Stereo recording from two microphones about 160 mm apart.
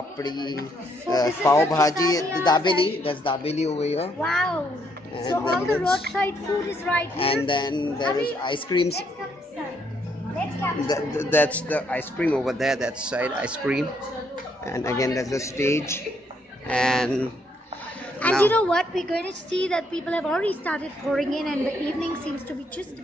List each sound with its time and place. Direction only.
0.2 s speech: 25° left (ahead or behind)
4.2 s a woman's voice: 5° left (ahead or behind)
5.2 s speech: 30° left (ahead or behind)
5.6 s a man's voice: 15° left (ahead or behind)
7.4 s speech: 30° left (ahead or behind)
10.9 s a woman's voice: 15° left (ahead or behind); by 13.8 s 5° right (ahead or behind)
14.6 s a man's voice: 20° left (ahead or behind)
16.6 s a woman's voice: 5° left (ahead or behind)